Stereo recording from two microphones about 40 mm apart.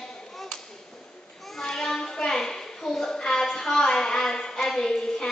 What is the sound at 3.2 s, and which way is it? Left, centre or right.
A woman's voice, centre.